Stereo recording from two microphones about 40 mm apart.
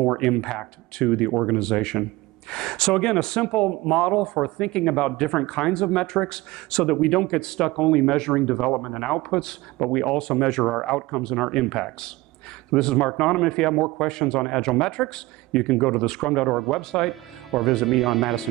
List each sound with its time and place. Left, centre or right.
0.0 s speech: centre
17.0 s speech: centre